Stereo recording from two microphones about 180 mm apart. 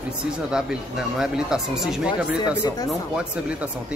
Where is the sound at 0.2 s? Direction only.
5° right (ahead or behind).